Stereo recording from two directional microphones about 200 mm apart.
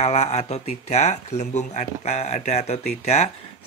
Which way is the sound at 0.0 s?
35° left (ahead or behind).